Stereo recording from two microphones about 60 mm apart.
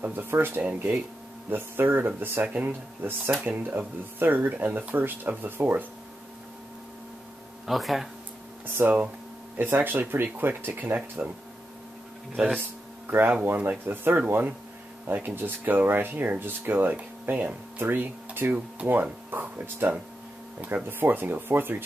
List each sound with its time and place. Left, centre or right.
0.0 s speech: right
7.6 s speech: centre
8.6 s speech: right
11.2 s speech: centre
12.5 s speech: right